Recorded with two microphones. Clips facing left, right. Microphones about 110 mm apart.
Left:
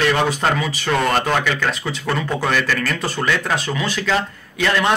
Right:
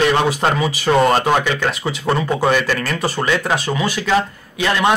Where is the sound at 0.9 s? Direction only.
25° right (ahead or behind).